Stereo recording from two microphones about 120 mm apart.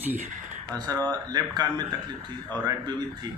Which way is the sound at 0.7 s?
35° right (ahead or behind).